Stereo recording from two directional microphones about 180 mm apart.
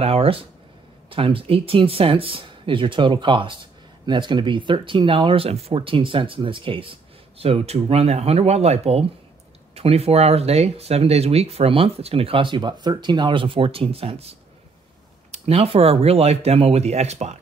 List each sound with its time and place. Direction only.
0.0 s speech: 35° right (ahead or behind)
15.3 s speech: 35° right (ahead or behind)